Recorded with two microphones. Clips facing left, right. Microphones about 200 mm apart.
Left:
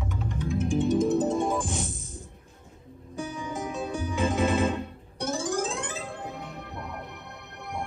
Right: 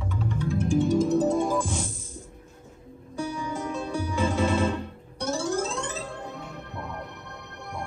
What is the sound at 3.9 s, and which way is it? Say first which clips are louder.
Music: right 1 dB; 50° left (ahead or behind).